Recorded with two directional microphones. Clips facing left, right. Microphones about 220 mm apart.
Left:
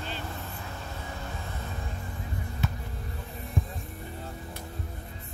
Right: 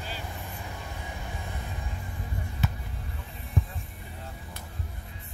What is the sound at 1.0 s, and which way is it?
Music, 15° right (ahead or behind).